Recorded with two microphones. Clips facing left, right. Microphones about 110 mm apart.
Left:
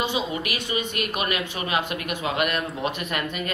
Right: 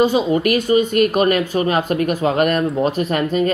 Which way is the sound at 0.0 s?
40° right (ahead or behind).